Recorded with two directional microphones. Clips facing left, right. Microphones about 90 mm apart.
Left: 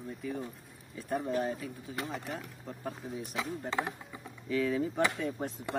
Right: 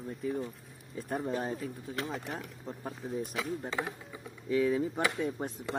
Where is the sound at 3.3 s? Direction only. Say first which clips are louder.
Even; 20° left (ahead or behind).